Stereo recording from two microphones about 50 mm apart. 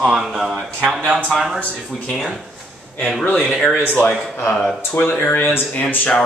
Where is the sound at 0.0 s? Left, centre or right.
Centre.